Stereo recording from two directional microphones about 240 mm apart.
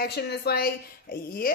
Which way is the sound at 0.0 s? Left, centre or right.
Left.